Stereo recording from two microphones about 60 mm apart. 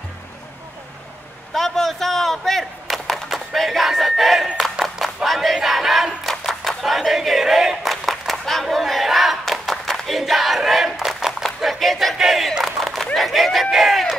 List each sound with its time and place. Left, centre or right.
1.5 s chop: centre
3.3 s battle cry: centre
4.6 s clapping: centre
5.0 s battle cry: centre
11.1 s a sound: centre
11.6 s battle cry: centre
12.6 s a sound: centre